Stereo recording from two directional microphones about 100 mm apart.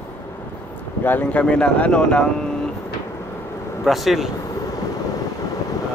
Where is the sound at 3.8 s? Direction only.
Centre (ahead or behind).